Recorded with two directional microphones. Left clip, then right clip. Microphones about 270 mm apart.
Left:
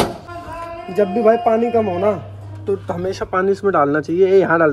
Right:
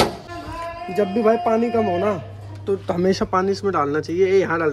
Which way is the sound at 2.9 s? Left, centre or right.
Right.